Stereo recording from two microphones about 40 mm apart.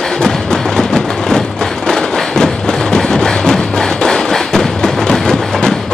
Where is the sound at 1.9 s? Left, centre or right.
Centre.